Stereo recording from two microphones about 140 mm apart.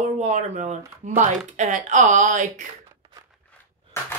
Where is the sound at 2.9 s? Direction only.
25° right (ahead or behind).